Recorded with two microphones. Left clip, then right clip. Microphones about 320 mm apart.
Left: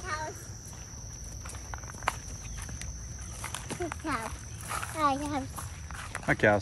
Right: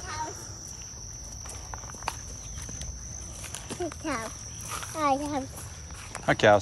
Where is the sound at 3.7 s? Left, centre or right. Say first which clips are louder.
Right 3 dB; centre.